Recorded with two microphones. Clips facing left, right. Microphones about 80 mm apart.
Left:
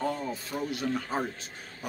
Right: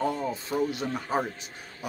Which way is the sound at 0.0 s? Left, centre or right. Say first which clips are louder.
Right 3 dB; right.